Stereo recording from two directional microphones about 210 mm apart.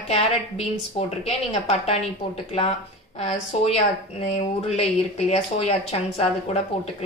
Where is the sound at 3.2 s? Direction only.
30° left (ahead or behind).